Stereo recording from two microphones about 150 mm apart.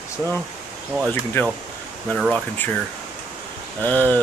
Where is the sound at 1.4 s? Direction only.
15° left (ahead or behind).